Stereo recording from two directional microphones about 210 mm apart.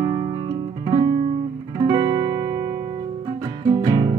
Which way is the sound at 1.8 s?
20° right (ahead or behind).